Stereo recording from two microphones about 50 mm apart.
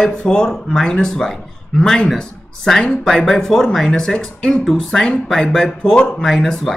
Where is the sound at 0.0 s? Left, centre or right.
Centre.